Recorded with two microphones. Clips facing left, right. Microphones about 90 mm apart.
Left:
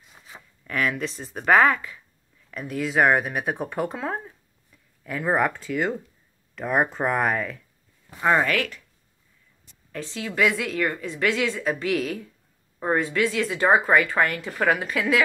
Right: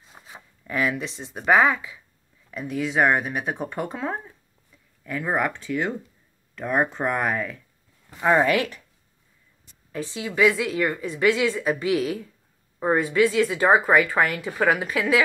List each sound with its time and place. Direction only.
0.3 s speech: 10° right (ahead or behind)
2.5 s speech: centre (ahead or behind)
8.2 s speech: 15° right (ahead or behind)
9.9 s speech: 10° right (ahead or behind)